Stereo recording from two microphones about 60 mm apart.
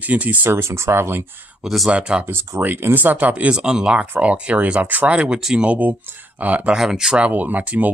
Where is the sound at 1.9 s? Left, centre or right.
Centre.